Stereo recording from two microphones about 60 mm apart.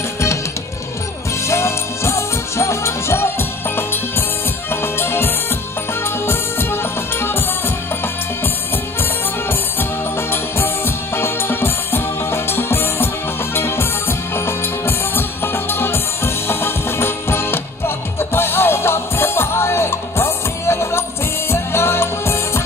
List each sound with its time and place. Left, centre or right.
1.5 s music: left
9.5 s music: left